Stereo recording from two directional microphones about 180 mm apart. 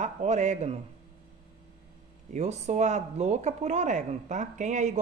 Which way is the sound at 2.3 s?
40° right (ahead or behind).